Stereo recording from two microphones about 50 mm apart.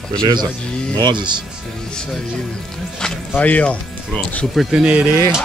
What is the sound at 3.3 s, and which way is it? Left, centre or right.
Speech, left.